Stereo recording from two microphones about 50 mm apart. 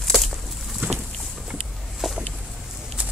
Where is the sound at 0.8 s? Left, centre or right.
Centre.